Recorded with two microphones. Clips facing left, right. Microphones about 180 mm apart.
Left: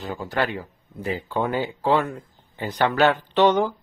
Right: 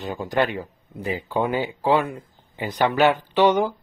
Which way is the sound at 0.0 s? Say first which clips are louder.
Right 3 dB; 15° right (ahead or behind).